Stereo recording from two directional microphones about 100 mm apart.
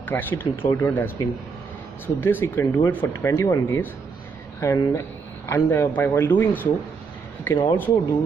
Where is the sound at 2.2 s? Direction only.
20° left (ahead or behind).